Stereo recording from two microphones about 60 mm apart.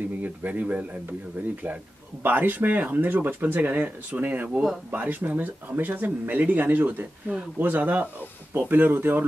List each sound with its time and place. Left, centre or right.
0.2 s speech: right
2.2 s speech: right